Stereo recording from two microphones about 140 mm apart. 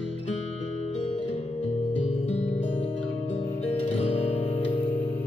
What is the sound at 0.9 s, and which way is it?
Music, 45° left (ahead or behind).